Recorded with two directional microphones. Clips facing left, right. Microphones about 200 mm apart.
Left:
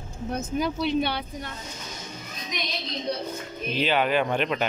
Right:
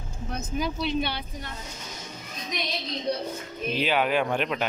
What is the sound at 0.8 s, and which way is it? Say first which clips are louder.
Speech: left 3 dB; 60° left (ahead or behind).